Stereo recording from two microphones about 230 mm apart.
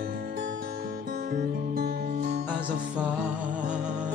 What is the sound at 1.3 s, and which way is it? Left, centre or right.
Music, right.